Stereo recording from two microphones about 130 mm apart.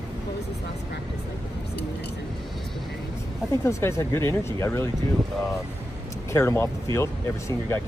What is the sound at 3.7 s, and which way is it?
Speech, 20° left (ahead or behind).